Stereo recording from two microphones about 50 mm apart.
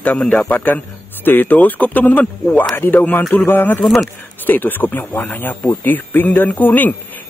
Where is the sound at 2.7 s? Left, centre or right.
Left.